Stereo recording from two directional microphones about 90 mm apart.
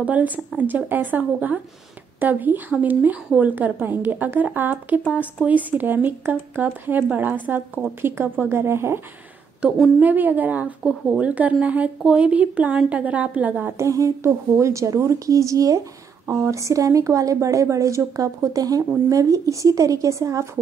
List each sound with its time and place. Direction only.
0.0 s a woman's voice: 15° right (ahead or behind)
9.6 s a woman's voice: 15° right (ahead or behind)
13.7 s a woman's voice: 35° right (ahead or behind)